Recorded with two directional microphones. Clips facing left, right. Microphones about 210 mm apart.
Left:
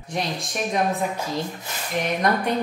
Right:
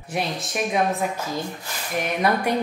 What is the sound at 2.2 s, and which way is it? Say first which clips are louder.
Speech: right 2 dB; 10° right (ahead or behind).